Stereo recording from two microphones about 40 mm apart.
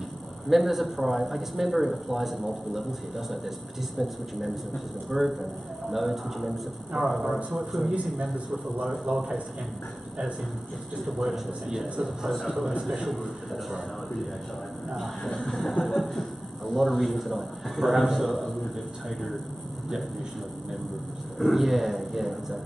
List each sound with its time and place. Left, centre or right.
0.5 s a man's voice: centre
5.1 s a man's voice: centre
9.0 s a man's voice: right
11.0 s a man's voice: centre
15.0 s a man's voice: centre
21.4 s a man's voice: centre